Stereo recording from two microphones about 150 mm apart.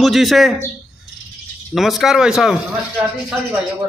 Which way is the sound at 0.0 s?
Centre (ahead or behind).